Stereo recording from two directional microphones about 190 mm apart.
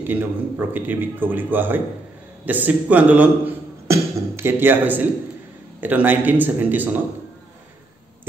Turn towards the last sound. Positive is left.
turn(degrees=-10)  # may be behind; listen again after turning